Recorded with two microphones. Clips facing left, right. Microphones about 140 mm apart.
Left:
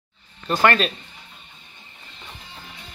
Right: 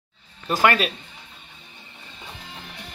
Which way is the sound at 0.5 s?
10° right (ahead or behind).